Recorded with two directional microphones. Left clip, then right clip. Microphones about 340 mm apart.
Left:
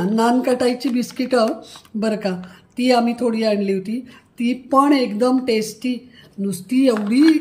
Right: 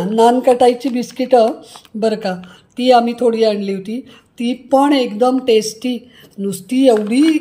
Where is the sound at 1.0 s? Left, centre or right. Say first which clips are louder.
Right 6 dB; centre.